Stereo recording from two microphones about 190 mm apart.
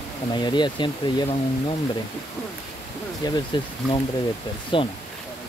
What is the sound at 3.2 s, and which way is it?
Speech, 20° left (ahead or behind).